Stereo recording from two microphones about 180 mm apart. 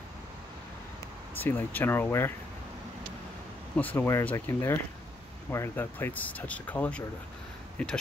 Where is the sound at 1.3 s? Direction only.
10° left (ahead or behind).